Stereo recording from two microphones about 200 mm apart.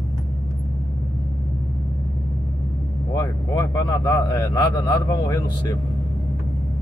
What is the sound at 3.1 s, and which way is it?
Speech, 15° left (ahead or behind).